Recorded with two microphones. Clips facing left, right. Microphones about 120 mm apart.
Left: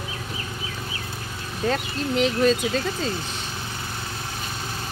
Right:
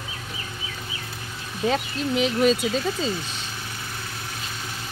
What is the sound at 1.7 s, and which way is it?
Speech, 10° right (ahead or behind).